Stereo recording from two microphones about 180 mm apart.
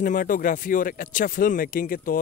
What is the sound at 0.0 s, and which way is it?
Speech, 50° left (ahead or behind).